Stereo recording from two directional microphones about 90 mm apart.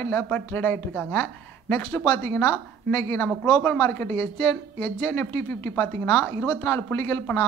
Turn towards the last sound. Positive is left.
turn(degrees=20)  # may be behind; listen again after turning